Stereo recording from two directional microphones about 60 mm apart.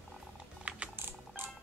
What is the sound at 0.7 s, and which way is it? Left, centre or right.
Typing, right.